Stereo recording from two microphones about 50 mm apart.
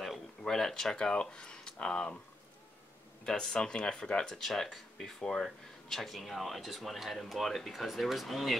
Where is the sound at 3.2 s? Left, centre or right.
Centre.